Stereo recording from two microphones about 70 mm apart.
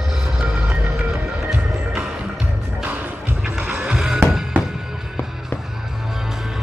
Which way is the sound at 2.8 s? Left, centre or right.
Right.